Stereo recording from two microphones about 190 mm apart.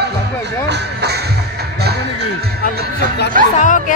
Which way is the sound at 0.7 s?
60° right (ahead or behind).